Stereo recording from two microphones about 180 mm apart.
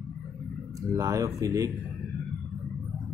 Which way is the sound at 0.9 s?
15° right (ahead or behind).